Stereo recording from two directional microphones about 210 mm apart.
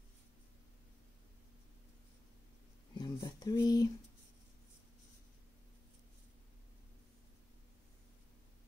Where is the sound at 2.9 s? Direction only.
20° left (ahead or behind).